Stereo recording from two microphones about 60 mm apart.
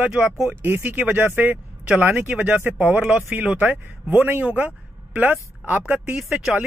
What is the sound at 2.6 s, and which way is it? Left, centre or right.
Speech, right.